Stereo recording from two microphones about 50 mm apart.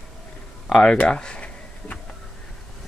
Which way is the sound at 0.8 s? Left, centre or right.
Centre.